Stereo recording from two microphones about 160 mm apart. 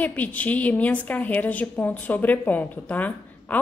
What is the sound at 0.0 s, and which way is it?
A woman's voice, 10° left (ahead or behind).